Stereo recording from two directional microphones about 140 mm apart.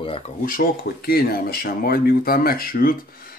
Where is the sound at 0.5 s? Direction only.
90° left.